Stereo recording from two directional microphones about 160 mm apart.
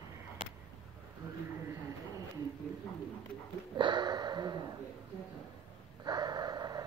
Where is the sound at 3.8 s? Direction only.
30° right (ahead or behind).